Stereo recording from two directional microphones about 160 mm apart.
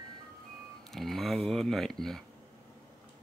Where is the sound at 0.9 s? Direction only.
Centre (ahead or behind).